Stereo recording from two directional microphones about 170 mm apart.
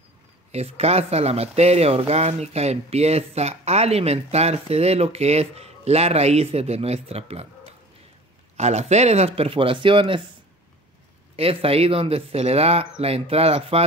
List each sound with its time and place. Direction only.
0.5 s speech: 40° right (ahead or behind)
8.5 s speech: 40° right (ahead or behind)
11.3 s speech: 35° right (ahead or behind)